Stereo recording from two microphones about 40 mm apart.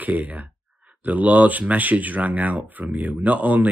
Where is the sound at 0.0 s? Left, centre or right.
Right.